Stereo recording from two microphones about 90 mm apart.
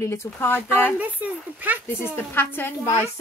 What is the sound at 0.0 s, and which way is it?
Speech, 30° left (ahead or behind).